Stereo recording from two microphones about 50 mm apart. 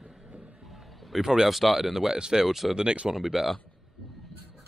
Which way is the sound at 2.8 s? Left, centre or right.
Centre.